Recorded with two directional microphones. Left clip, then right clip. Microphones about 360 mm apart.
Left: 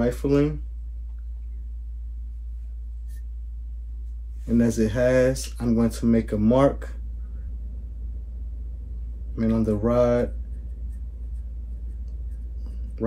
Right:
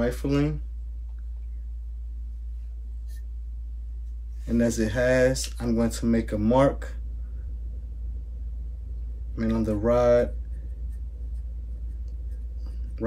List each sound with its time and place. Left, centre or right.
0.0 s speech: centre
4.5 s speech: centre
9.3 s speech: centre